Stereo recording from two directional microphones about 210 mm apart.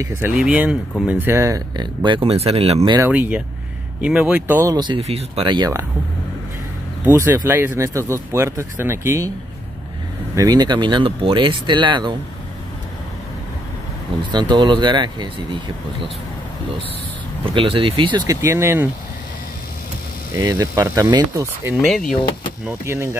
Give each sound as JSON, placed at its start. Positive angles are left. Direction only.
{"t": 0.0, "sound": "speech", "side_deg": -10}
{"t": 3.0, "sound": "speech", "side_deg": -5}
{"t": 4.5, "sound": "speech", "side_deg": -15}
{"t": 7.1, "sound": "speech", "side_deg": -10}
{"t": 10.3, "sound": "speech", "side_deg": -15}
{"t": 14.3, "sound": "speech", "side_deg": -20}
{"t": 17.6, "sound": "speech", "side_deg": -25}
{"t": 20.3, "sound": "speech", "side_deg": -15}
{"t": 21.8, "sound": "speech", "side_deg": 0}